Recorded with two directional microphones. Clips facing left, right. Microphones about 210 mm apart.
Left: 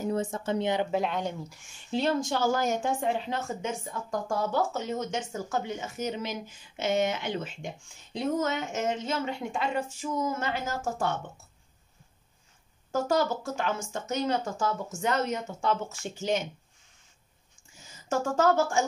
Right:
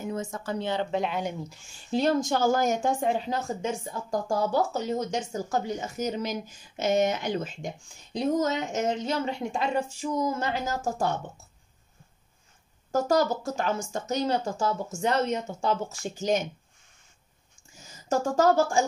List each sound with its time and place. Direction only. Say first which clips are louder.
0.0 s speech: left 3 dB; 35° left (ahead or behind)
0.9 s speech: even; centre (ahead or behind)
1.2 s speech: right 1 dB; 20° right (ahead or behind)
1.9 s speech: right 3 dB; 40° right (ahead or behind)
12.9 s speech: right 3 dB; 40° right (ahead or behind)
18.3 s speech: right 2 dB; 35° right (ahead or behind)